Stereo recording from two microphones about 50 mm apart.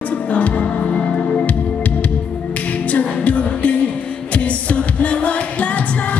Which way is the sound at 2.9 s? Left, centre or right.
Left.